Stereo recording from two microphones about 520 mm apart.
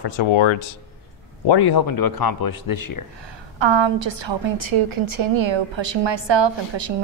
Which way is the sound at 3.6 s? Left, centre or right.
Right.